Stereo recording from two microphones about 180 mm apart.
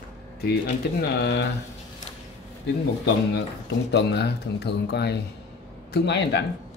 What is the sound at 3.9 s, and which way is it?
Speech, 70° left (ahead or behind).